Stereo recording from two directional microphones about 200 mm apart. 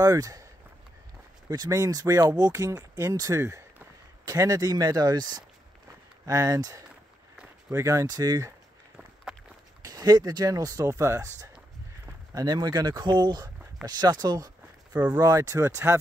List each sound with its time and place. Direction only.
0.0 s speech: 15° right (ahead or behind)
1.5 s speech: 20° right (ahead or behind)
9.8 s speech: 20° right (ahead or behind)